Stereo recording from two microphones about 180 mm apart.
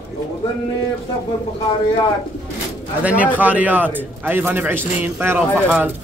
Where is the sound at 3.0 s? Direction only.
10° right (ahead or behind).